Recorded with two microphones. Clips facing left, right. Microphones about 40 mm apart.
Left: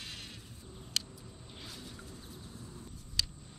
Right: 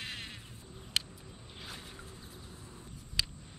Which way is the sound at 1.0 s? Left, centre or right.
Right.